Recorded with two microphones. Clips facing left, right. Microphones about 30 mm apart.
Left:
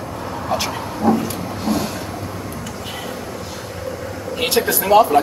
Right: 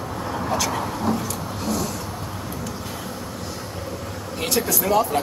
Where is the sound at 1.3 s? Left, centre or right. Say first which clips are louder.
Left 4 dB; left.